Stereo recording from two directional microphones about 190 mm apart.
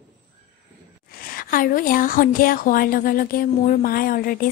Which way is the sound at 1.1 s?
50° left (ahead or behind).